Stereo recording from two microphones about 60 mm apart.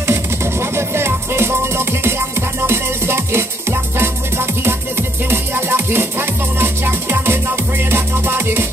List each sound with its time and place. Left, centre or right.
0.0 s music: right